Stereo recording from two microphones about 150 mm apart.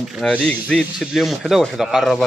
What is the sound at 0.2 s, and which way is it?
Speech, 10° left (ahead or behind).